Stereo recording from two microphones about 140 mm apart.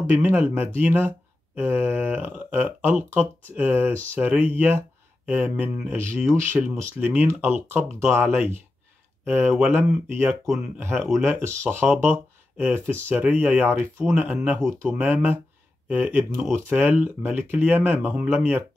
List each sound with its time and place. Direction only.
0.1 s speech: 15° right (ahead or behind)
14.6 s speech: 5° left (ahead or behind)
14.9 s speech: 10° right (ahead or behind)